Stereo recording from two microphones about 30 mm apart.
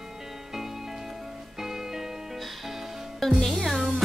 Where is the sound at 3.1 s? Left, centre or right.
Centre.